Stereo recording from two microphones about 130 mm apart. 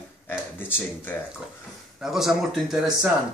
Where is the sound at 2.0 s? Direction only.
Centre (ahead or behind).